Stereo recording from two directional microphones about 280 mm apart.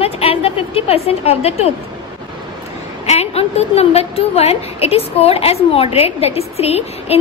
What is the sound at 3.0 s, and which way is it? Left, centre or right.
A woman's voice, left.